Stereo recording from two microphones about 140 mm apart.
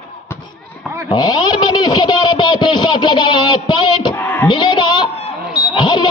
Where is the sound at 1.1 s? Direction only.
30° left (ahead or behind).